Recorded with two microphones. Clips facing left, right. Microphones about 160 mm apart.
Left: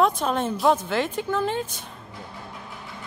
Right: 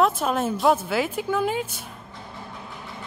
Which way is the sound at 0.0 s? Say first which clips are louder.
Even; 5° right (ahead or behind).